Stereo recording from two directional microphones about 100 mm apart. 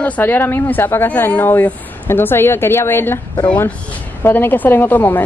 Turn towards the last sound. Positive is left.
turn(degrees=20)  # may be behind; listen again after turning